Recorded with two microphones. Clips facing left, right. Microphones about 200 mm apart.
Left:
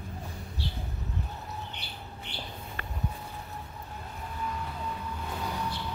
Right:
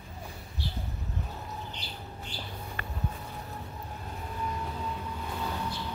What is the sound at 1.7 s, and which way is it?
Bird, 60° left (ahead or behind).